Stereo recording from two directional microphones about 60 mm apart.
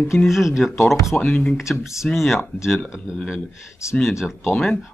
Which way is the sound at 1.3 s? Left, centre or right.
Centre.